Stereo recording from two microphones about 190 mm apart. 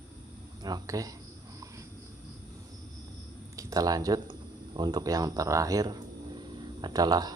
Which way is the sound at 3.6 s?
20° right (ahead or behind).